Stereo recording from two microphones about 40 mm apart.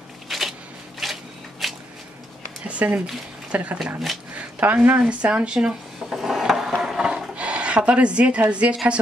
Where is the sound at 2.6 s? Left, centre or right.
Right.